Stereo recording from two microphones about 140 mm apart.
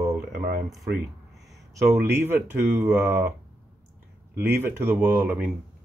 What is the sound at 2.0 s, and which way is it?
Speech, 15° right (ahead or behind).